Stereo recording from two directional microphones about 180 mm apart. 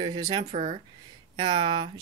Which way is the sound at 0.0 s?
25° right (ahead or behind).